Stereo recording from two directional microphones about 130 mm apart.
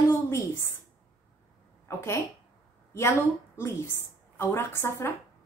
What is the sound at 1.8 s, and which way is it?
Speech, 20° left (ahead or behind).